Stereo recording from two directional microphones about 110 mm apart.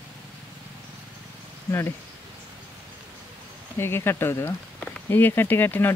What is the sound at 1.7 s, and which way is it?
Speech, 25° left (ahead or behind).